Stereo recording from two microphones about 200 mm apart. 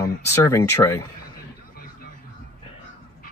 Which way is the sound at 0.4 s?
15° left (ahead or behind).